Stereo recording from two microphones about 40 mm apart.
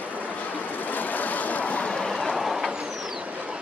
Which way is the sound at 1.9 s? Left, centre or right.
Centre.